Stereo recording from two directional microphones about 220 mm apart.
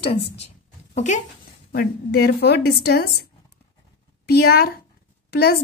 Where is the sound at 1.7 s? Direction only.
45° left (ahead or behind).